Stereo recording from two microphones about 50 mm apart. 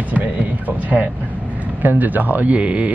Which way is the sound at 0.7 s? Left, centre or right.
Right.